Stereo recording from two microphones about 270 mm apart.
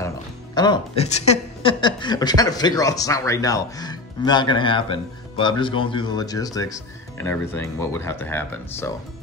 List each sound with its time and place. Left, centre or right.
0.6 s a woman's voice: centre